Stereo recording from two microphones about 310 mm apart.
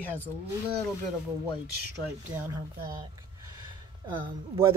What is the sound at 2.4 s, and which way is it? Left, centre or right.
Speech, centre.